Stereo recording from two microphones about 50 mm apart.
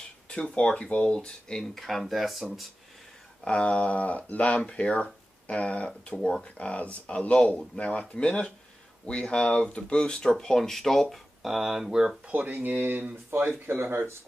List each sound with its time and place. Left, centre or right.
0.3 s speech: left
1.6 s speech: centre
3.4 s speech: left
6.1 s speech: centre
6.4 s speech: left; by 12.2 s centre
12.3 s speech: right